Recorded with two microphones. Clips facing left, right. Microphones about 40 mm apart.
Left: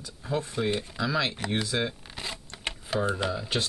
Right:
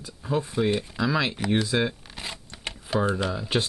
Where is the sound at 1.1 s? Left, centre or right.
Centre.